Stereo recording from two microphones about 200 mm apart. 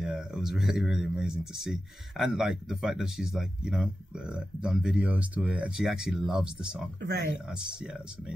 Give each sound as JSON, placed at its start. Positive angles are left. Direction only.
{"t": 0.0, "sound": "speech", "side_deg": 0}